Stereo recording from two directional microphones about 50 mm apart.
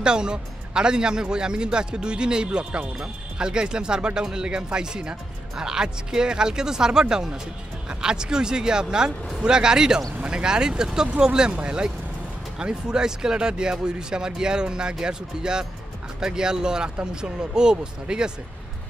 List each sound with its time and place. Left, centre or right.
0.0 s speech: centre